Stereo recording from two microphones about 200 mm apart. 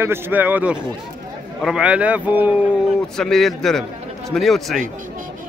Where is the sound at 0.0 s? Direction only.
10° right (ahead or behind).